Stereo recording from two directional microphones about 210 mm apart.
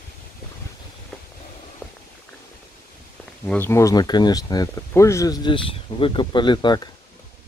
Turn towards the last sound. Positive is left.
turn(degrees=20)  # may be behind; listen again after turning